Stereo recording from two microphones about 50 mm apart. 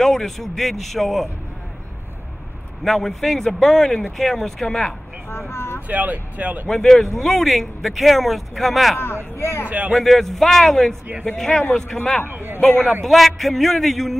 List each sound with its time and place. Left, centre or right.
0.0 s speech: centre
2.8 s speech: centre
5.5 s vehicle: left
5.9 s speech: right
6.7 s speech: centre
9.0 s speech: left
9.7 s a man's voice: right
9.9 s speech: centre
12.3 s a man's voice: right
12.5 s a man's voice: left
13.0 s speech: centre